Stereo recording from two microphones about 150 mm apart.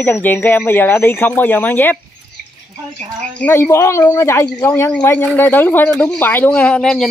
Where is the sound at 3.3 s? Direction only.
15° left (ahead or behind).